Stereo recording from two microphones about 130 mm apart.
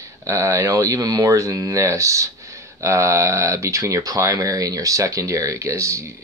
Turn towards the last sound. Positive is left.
turn(degrees=-20)  # may be behind; listen again after turning